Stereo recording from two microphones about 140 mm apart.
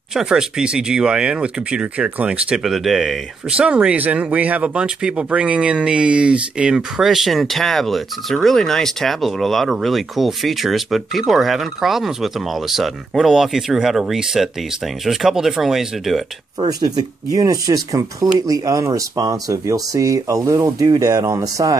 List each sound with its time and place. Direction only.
0.1 s speech: 5° right (ahead or behind)
16.5 s speech: 30° right (ahead or behind)